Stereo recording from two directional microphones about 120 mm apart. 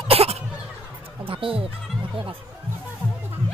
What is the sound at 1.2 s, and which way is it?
Speech, 50° right (ahead or behind).